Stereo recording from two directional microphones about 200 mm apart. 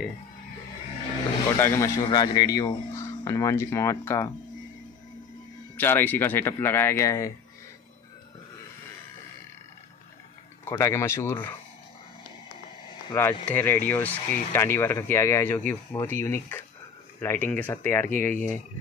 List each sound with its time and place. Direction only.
1.6 s a man's voice: 15° left (ahead or behind)
5.8 s a man's voice: 10° left (ahead or behind)
10.6 s a man's voice: 15° left (ahead or behind)
13.1 s a man's voice: 10° left (ahead or behind)